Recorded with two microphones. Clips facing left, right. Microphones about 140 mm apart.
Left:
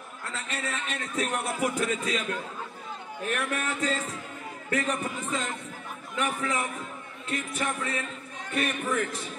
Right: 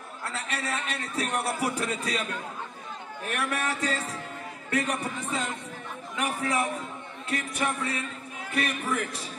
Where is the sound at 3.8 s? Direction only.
35° right (ahead or behind).